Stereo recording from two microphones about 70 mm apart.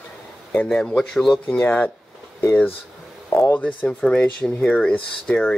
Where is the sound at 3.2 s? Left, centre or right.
Left.